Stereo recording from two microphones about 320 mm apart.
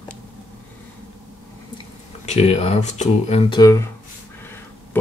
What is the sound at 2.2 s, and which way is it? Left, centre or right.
Speech, centre.